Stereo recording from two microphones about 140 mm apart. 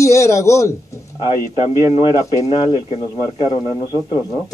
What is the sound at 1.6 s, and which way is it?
Music, 45° left (ahead or behind).